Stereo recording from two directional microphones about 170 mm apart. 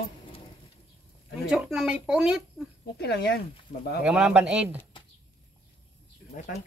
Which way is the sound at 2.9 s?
75° left (ahead or behind).